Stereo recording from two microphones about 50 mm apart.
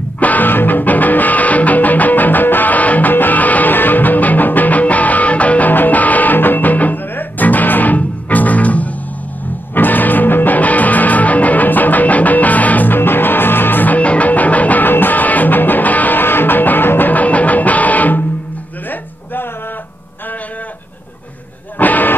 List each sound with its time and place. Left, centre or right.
0.2 s music: left
17.1 s music: left
21.7 s music: left